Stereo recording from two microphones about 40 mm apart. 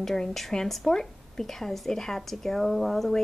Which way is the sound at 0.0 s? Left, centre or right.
Centre.